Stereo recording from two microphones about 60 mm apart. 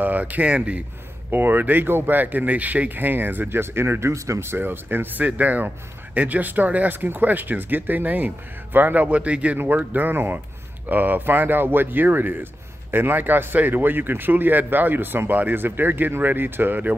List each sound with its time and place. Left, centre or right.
0.0 s speech: right
1.3 s speech: right